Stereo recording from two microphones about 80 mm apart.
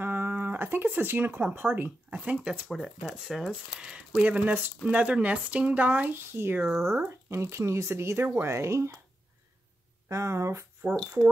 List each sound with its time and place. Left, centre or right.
0.0 s speech: right
2.1 s speech: centre
2.7 s speech: centre
4.2 s speech: right
10.0 s speech: right